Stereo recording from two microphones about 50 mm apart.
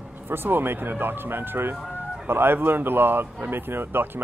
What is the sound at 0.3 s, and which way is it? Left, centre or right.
Speech, right.